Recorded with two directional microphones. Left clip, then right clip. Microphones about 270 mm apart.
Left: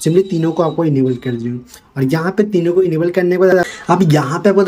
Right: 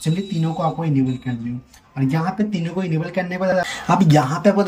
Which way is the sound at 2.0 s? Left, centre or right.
Centre.